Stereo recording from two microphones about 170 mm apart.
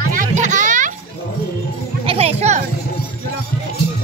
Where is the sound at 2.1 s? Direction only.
35° right (ahead or behind).